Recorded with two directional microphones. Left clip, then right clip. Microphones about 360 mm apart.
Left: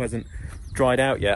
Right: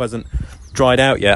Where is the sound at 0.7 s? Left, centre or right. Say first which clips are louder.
Right 7 dB; right.